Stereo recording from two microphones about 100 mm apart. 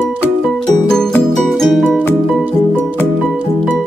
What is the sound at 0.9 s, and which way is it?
Music, 5° left (ahead or behind).